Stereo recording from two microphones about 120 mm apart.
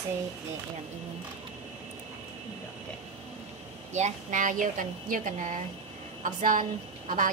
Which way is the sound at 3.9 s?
85° right.